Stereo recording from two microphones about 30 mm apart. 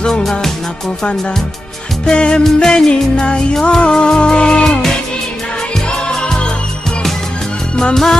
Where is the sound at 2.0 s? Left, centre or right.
Left.